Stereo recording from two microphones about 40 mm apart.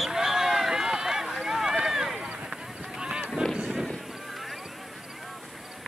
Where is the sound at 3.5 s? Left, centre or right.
Right.